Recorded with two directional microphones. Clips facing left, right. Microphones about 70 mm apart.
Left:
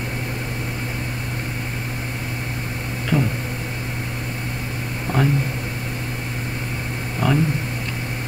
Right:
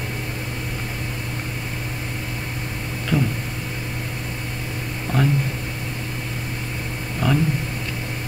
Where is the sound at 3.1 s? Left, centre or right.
Left.